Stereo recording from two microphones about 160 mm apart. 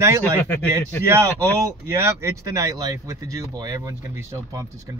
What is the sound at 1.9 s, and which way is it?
Speech, 15° right (ahead or behind).